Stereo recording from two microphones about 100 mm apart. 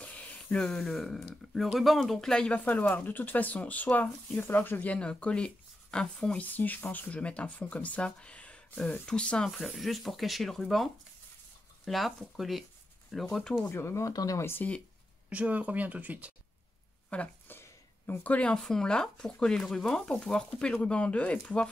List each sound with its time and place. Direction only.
0.0 s a sound: 15° left (ahead or behind)
1.2 s speech: centre (ahead or behind)
13.7 s speech: 25° left (ahead or behind)
15.2 s speech: 15° right (ahead or behind)
17.1 s speech: 15° left (ahead or behind)